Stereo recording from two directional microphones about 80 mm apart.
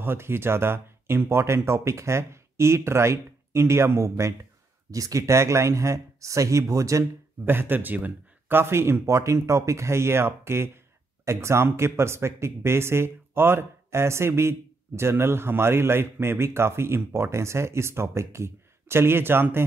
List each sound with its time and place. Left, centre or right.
0.0 s speech: right
7.4 s speech: right